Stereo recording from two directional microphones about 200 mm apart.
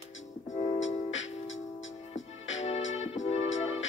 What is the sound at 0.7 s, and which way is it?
Music, 70° left (ahead or behind).